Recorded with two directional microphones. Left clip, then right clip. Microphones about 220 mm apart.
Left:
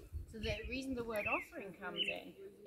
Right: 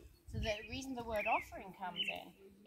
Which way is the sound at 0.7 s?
20° right (ahead or behind).